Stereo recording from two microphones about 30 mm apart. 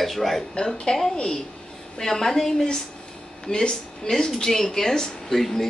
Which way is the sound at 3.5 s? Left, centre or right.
Left.